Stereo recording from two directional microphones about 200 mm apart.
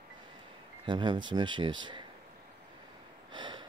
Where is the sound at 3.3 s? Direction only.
20° right (ahead or behind).